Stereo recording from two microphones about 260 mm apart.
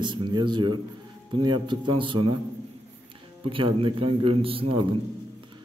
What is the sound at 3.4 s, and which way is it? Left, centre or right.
A man's voice, centre.